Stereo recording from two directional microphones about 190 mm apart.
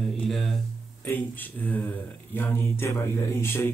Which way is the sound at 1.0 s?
10° left (ahead or behind).